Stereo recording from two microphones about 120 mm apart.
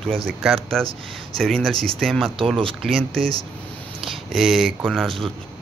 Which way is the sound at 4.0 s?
5° right (ahead or behind).